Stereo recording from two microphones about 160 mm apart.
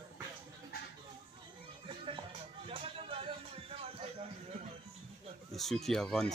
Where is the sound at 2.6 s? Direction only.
35° right (ahead or behind).